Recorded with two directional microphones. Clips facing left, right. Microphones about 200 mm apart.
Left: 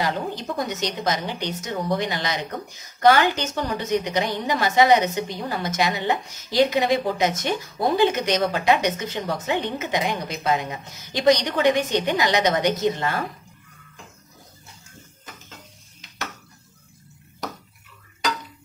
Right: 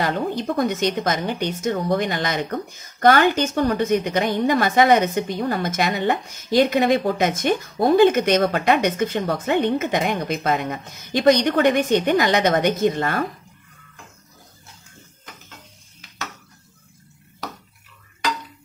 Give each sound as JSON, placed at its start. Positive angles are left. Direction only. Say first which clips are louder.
{"t": 0.0, "sound": "a woman's voice", "louder": "right 3 dB", "side_deg": -55}